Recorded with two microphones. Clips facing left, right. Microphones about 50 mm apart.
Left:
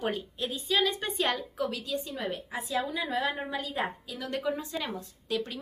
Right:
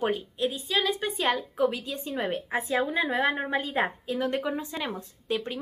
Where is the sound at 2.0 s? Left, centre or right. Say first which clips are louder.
Right 4 dB; right.